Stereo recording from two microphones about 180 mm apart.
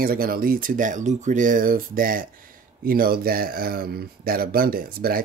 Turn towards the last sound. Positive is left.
turn(degrees=-55)  # may be behind; listen again after turning